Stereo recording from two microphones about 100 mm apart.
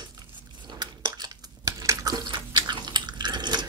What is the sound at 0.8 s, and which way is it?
Chewing, 45° right (ahead or behind).